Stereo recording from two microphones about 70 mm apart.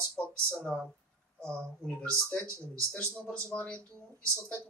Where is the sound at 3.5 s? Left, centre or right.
Centre.